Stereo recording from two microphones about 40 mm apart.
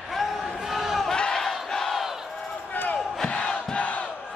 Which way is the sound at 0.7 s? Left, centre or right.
Centre.